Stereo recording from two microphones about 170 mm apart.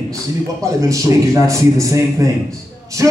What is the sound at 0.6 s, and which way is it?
A man's voice, 20° right (ahead or behind).